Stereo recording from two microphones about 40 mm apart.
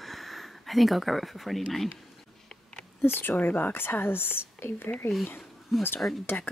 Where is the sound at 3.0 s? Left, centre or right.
Left.